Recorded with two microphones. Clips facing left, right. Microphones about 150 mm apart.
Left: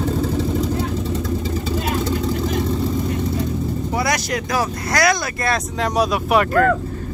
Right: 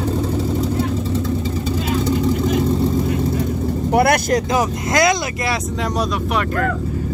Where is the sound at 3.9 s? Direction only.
60° right (ahead or behind).